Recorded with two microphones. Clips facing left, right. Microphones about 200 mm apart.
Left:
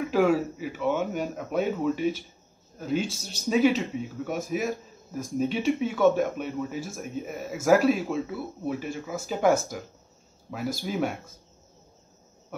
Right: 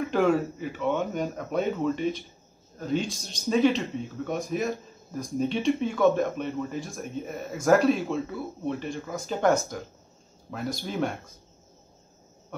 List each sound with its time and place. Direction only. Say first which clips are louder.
0.0 s speech: left 1 dB; centre (ahead or behind)